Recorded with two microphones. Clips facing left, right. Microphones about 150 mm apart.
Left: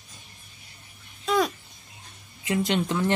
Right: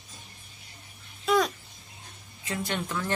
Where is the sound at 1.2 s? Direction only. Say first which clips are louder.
Even; centre (ahead or behind).